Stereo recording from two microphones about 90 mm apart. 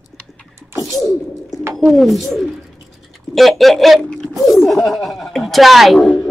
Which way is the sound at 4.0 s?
10° left (ahead or behind).